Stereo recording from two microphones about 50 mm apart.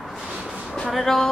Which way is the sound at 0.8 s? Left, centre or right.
Centre.